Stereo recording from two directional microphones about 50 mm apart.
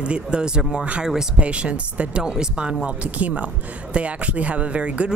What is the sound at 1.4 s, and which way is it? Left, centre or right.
Speech, right.